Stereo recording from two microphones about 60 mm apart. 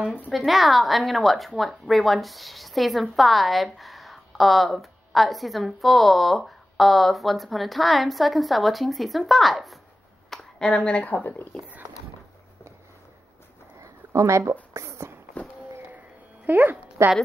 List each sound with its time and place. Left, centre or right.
0.3 s a woman's voice: centre
10.6 s speech: centre
13.7 s a sound: right
16.4 s speech: right